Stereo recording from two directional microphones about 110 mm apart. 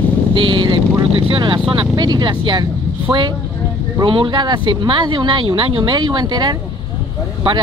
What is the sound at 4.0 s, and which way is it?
Speech, 45° right (ahead or behind).